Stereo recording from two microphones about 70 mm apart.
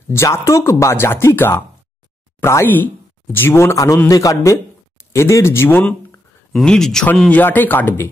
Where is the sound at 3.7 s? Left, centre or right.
Left.